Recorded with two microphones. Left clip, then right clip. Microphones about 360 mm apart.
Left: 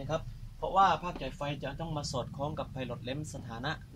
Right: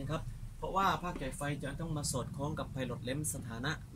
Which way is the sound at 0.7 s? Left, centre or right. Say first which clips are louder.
Left 6 dB; centre.